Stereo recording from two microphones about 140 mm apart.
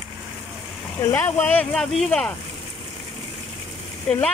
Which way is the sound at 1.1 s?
10° left (ahead or behind).